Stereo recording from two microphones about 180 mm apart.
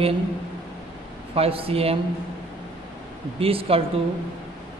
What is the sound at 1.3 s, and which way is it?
Speech, 30° right (ahead or behind).